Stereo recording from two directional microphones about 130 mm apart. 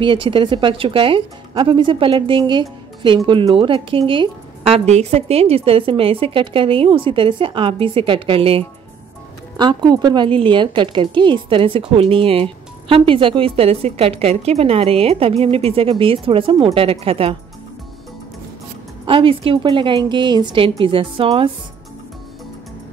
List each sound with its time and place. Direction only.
0.0 s a woman's voice: 40° right (ahead or behind)
9.6 s a woman's voice: 35° right (ahead or behind)
19.0 s a woman's voice: 45° right (ahead or behind)